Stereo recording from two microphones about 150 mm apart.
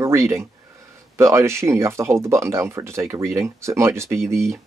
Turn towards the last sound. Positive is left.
turn(degrees=-20)  # may be behind; listen again after turning